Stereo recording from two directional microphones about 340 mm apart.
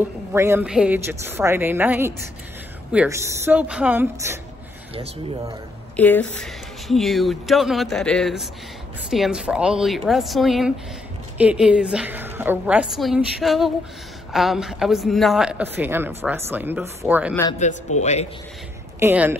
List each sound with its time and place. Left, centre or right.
0.3 s a woman's voice: centre
5.9 s speech: centre
17.4 s a man's voice: centre
18.9 s a woman's voice: centre